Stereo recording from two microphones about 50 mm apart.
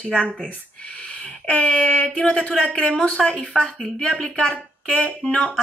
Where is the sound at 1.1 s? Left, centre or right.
Left.